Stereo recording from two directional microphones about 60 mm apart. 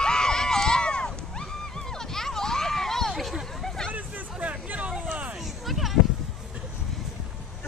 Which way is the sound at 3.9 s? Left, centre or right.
Right.